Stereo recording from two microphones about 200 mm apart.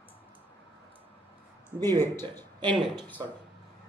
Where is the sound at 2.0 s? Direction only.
10° left (ahead or behind).